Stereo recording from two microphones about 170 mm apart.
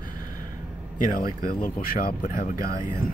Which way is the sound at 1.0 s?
55° left (ahead or behind).